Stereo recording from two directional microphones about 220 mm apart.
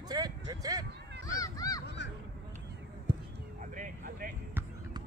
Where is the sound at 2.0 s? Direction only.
50° left (ahead or behind).